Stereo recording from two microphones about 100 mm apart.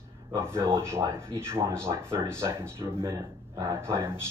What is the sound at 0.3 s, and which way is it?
Speech, 25° right (ahead or behind).